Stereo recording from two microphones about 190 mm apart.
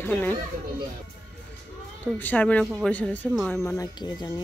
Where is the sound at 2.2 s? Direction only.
10° left (ahead or behind).